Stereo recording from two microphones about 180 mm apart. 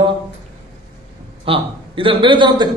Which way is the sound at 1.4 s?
30° right (ahead or behind).